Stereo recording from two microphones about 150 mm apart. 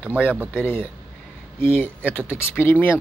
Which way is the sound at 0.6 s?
15° left (ahead or behind).